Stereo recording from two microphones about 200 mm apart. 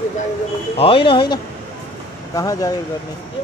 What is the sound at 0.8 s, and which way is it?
Speech, 25° left (ahead or behind).